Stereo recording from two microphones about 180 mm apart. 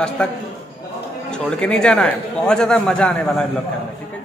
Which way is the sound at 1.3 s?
5° left (ahead or behind).